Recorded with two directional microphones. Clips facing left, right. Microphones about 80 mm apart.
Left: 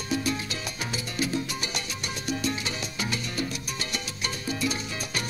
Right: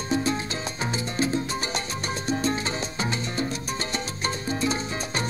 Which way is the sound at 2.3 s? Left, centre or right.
Right.